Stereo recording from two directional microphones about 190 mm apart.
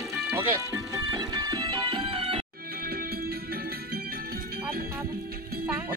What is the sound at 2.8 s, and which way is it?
Music, 55° right (ahead or behind).